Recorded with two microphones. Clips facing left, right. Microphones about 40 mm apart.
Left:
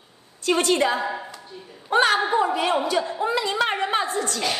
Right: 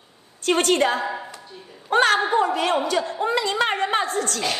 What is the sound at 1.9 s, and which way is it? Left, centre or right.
A woman's voice, right.